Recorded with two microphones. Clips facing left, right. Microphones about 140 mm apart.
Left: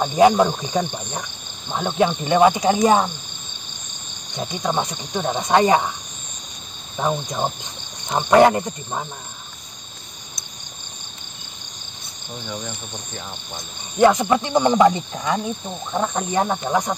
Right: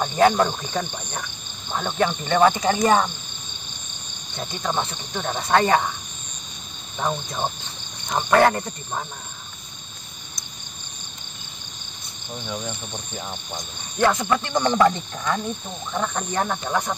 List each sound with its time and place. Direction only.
0.0 s speech: 15° left (ahead or behind)
4.4 s speech: 15° left (ahead or behind)
7.0 s speech: 10° left (ahead or behind)
13.9 s speech: 15° left (ahead or behind)